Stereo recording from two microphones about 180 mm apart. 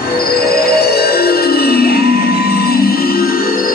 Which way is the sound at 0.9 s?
60° left (ahead or behind).